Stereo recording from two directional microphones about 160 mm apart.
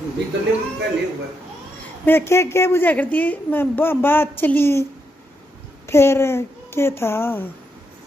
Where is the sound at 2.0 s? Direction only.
15° left (ahead or behind).